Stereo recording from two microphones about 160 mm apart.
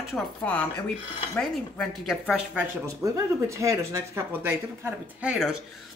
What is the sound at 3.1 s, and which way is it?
Speech, 20° right (ahead or behind).